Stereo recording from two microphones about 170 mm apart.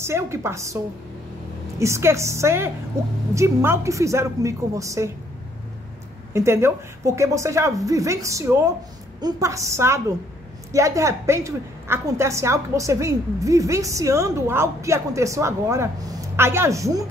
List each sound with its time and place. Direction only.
0.0 s a woman's voice: 15° right (ahead or behind)
1.8 s a woman's voice: 15° right (ahead or behind)
6.3 s a woman's voice: 15° right (ahead or behind)